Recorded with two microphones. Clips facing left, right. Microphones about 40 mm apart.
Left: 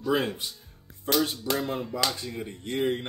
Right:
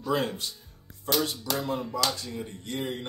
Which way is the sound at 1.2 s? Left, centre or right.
Left.